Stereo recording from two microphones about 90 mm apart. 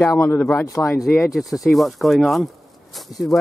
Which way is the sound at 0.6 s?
35° left (ahead or behind).